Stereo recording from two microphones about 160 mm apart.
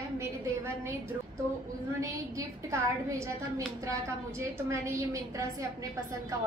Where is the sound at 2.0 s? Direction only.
20° right (ahead or behind).